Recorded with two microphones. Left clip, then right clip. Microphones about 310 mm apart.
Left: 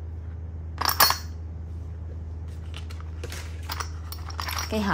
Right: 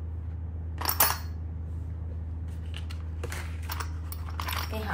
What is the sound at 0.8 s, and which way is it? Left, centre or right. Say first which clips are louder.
Coin: left 7 dB; centre.